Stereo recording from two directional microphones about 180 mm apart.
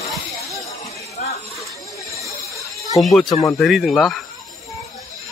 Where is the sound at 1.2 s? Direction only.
45° left (ahead or behind).